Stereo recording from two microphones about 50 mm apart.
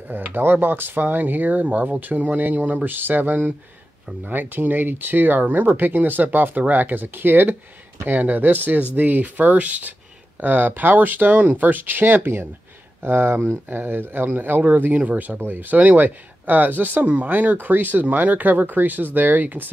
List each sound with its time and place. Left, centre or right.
0.1 s speech: right
13.7 s speech: right